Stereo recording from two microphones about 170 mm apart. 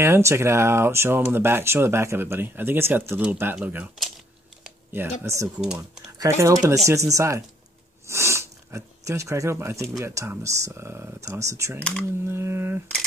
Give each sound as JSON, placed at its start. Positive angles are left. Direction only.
{"t": 0.0, "sound": "speech", "side_deg": -15}